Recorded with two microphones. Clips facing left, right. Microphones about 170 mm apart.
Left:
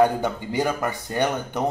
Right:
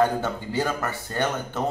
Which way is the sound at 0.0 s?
15° left (ahead or behind).